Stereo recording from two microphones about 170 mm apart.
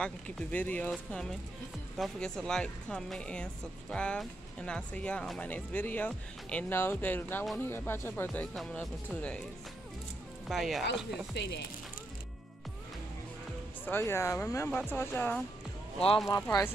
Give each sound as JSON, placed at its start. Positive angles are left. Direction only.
{"t": 0.0, "sound": "speech", "side_deg": 10}
{"t": 2.0, "sound": "speech", "side_deg": 5}
{"t": 10.5, "sound": "speech", "side_deg": 0}
{"t": 11.4, "sound": "speech", "side_deg": 90}
{"t": 13.8, "sound": "speech", "side_deg": 15}